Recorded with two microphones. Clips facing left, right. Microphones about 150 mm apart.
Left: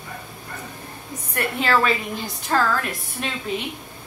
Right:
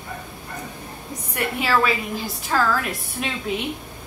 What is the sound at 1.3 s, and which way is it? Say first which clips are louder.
A woman's voice: even; 10° right (ahead or behind).